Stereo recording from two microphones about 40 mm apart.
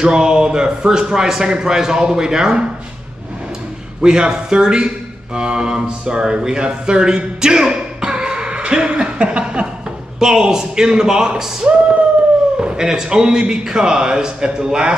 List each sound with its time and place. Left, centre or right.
0.0 s a man's voice: centre
4.0 s a man's voice: centre